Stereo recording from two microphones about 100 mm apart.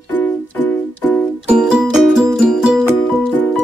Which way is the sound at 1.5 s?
5° right (ahead or behind).